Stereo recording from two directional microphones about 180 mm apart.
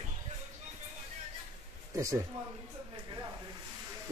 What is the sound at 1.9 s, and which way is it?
Speech, 15° right (ahead or behind).